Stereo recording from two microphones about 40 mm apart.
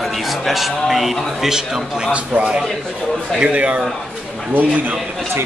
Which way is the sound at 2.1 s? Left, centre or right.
Right.